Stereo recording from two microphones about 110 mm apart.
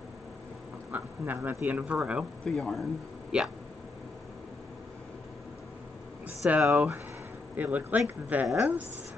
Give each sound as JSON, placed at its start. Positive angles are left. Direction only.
{"t": 0.9, "sound": "speech", "side_deg": -15}
{"t": 2.4, "sound": "speech", "side_deg": 0}
{"t": 6.2, "sound": "a sound", "side_deg": -15}
{"t": 6.6, "sound": "speech", "side_deg": -5}
{"t": 7.5, "sound": "speech", "side_deg": -15}